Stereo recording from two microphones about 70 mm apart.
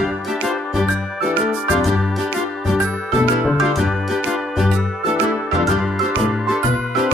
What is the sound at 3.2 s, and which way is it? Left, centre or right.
Music, centre.